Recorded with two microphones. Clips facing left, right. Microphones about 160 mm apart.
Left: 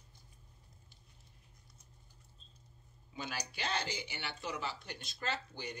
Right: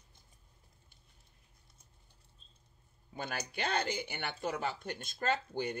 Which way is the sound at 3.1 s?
50° right (ahead or behind).